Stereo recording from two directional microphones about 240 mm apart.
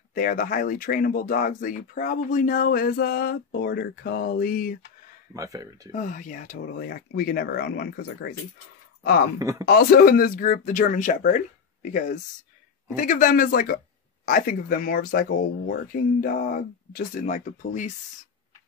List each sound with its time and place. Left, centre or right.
0.1 s speech: left
5.3 s speech: centre
5.9 s speech: left
9.4 s speech: centre
9.7 s speech: left
12.9 s speech: left